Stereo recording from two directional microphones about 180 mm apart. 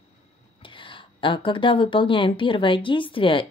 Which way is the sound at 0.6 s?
30° left (ahead or behind).